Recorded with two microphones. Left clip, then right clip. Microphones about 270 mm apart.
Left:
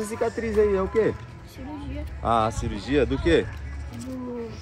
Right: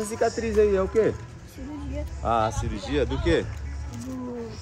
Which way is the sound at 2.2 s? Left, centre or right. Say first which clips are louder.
Left 1 dB; left.